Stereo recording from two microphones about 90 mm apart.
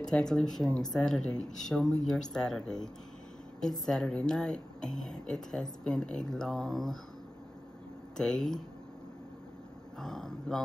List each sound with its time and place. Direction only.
0.0 s speech: 5° left (ahead or behind)
8.2 s speech: 5° left (ahead or behind)
9.9 s speech: 5° left (ahead or behind)